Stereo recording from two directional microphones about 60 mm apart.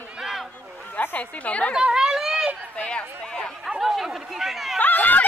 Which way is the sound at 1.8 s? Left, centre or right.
Centre.